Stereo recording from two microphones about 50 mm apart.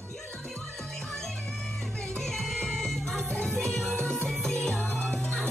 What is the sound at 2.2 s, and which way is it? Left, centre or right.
Music, centre.